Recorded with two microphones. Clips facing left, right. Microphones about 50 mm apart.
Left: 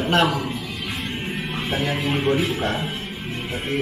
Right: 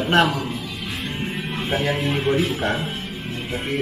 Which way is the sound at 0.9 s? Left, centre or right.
Centre.